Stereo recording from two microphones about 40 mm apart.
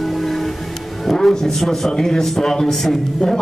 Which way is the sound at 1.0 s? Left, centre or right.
Centre.